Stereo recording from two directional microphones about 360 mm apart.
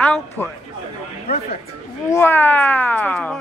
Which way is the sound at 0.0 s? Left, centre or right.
Centre.